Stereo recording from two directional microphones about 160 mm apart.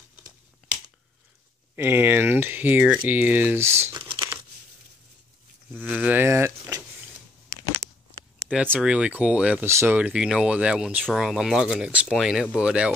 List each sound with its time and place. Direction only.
1.8 s speech: 15° right (ahead or behind)
3.9 s crumpling: 30° right (ahead or behind)
5.8 s speech: 10° right (ahead or behind)
8.5 s speech: 5° right (ahead or behind)